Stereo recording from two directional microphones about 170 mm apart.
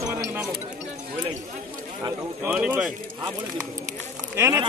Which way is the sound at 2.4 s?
10° right (ahead or behind).